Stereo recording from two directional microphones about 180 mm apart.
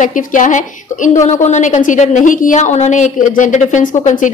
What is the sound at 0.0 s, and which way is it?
A woman's voice, 45° left (ahead or behind).